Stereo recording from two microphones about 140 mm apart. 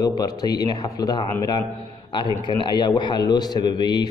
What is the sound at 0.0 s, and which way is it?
A man's voice, 30° left (ahead or behind).